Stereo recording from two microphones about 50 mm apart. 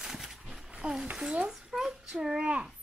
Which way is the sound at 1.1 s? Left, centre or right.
Right.